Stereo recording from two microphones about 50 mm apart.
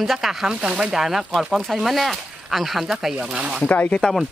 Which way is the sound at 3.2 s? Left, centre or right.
Right.